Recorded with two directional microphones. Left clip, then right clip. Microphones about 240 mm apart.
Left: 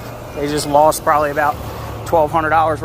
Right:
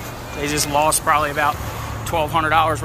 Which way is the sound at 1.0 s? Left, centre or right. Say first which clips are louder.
Left 3 dB; centre.